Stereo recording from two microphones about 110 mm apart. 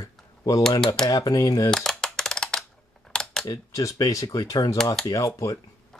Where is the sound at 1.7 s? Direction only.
5° left (ahead or behind).